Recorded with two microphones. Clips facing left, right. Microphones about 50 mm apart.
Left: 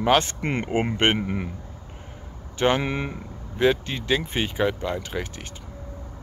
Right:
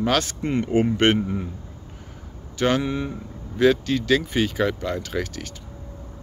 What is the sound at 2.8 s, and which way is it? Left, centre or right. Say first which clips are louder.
Speech: right 1 dB; left.